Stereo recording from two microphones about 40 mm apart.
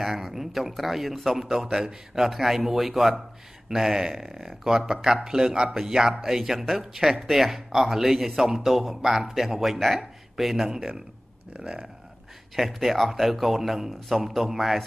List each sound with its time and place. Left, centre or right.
0.0 s a man's voice: centre
12.5 s a man's voice: centre